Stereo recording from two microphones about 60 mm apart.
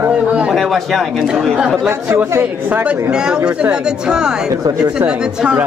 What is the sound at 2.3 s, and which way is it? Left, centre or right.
Speech, right.